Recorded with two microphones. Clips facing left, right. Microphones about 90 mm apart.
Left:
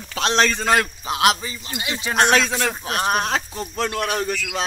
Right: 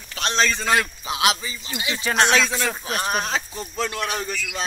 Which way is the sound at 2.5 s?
60° left (ahead or behind).